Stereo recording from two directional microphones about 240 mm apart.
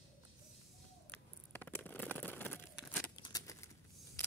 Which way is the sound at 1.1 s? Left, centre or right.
Centre.